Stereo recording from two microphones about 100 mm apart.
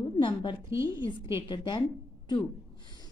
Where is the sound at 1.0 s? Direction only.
55° left (ahead or behind).